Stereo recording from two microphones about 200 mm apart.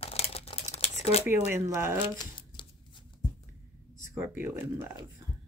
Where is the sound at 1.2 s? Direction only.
10° right (ahead or behind).